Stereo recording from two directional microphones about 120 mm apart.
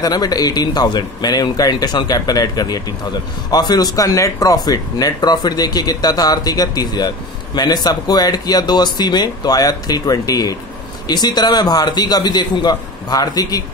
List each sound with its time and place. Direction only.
0.0 s speech: 35° left (ahead or behind)